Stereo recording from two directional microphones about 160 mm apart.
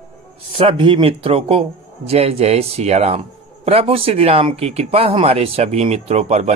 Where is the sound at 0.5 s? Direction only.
35° right (ahead or behind).